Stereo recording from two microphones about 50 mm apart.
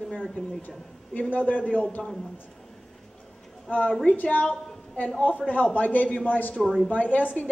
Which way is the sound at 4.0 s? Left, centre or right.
Left.